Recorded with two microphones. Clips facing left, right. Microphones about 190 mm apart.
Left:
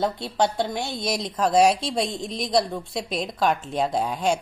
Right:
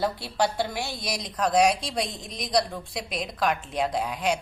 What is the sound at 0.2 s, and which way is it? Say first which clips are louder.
Speech: left 3 dB; 20° left (ahead or behind).